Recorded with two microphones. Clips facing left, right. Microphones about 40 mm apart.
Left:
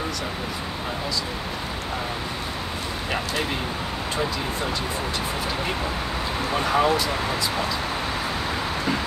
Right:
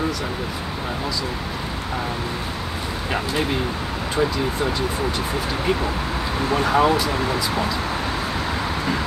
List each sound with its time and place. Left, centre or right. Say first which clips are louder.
6.5 s speech: right 3 dB; centre